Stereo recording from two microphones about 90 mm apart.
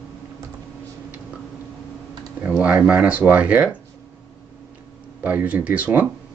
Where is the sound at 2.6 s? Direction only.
15° right (ahead or behind).